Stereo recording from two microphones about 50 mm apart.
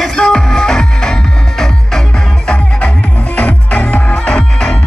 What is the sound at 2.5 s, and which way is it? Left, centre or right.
Music, left.